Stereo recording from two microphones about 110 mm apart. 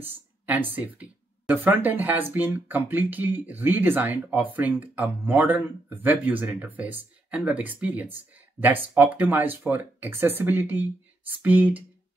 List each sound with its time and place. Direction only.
0.0 s speech: 15° right (ahead or behind)